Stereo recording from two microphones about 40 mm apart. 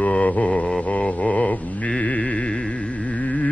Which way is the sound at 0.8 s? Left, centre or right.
Left.